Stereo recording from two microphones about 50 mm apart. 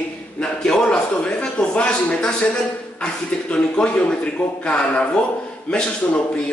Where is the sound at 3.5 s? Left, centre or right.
Left.